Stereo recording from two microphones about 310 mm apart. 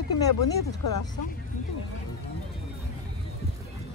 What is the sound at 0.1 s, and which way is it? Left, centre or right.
Speech, left.